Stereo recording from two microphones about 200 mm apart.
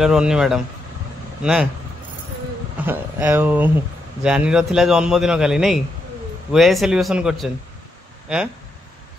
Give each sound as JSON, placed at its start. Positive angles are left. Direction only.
{"t": 0.0, "sound": "a man's voice", "side_deg": -5}
{"t": 2.8, "sound": "a man's voice", "side_deg": -10}